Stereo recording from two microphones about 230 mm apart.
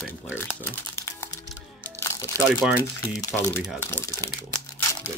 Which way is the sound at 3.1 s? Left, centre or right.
Centre.